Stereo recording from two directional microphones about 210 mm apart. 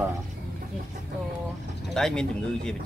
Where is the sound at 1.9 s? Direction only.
5° left (ahead or behind).